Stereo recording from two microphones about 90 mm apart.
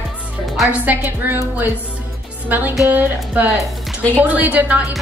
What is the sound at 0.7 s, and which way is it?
A woman's voice, 20° right (ahead or behind).